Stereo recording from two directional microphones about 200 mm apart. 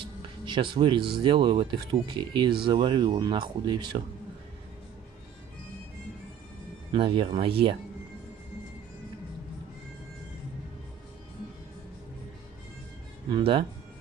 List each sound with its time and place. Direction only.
0.5 s speech: 25° right (ahead or behind)
6.9 s speech: 25° right (ahead or behind)
13.3 s speech: 25° right (ahead or behind)